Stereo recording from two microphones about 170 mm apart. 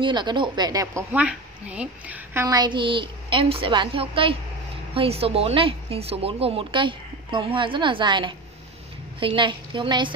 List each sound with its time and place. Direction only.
0.0 s a woman's voice: 25° right (ahead or behind)
1.1 s a woman's voice: 5° right (ahead or behind)
2.4 s a woman's voice: 25° right (ahead or behind)